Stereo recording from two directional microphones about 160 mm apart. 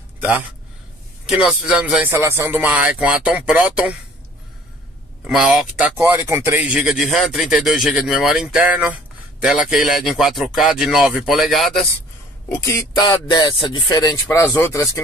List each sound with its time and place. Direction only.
1.2 s speech: 5° right (ahead or behind)
5.2 s speech: 5° right (ahead or behind)
12.4 s speech: 20° left (ahead or behind)